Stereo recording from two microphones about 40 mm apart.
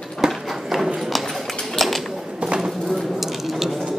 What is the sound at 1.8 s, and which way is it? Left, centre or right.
Pigeon, centre.